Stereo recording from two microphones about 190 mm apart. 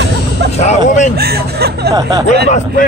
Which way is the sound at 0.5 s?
40° left (ahead or behind).